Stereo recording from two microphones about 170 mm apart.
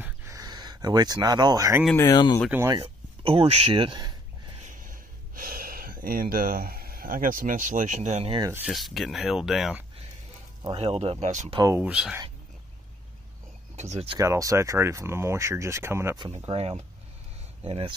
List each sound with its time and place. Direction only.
0.0 s a sound: 15° right (ahead or behind)
2.0 s speech: 25° left (ahead or behind)
2.5 s speech: 15° right (ahead or behind)
2.8 s speech: 35° right (ahead or behind)
4.6 s a sound: 50° right (ahead or behind)
8.4 s speech: 20° right (ahead or behind)
8.6 s speech: centre (ahead or behind)
10.6 s speech: 30° right (ahead or behind)
11.5 s speech: 20° right (ahead or behind)
11.8 s speech: 5° right (ahead or behind)
13.7 s speech: 40° right (ahead or behind)
14.1 s speech: 20° right (ahead or behind)
16.4 s speech: 35° right (ahead or behind)